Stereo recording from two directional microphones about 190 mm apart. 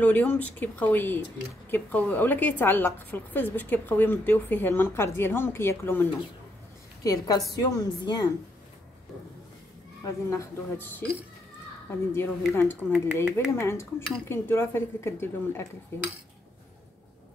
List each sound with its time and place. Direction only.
0.0 s a woman's voice: 10° left (ahead or behind)
10.0 s a woman's voice: 15° left (ahead or behind)